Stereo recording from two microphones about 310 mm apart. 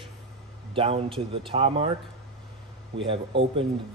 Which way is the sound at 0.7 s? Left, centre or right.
Centre.